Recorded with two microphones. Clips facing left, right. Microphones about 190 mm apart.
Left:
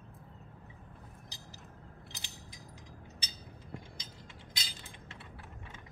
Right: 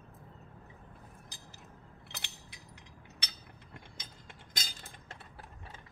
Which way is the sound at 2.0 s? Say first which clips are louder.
Even; 65° right (ahead or behind).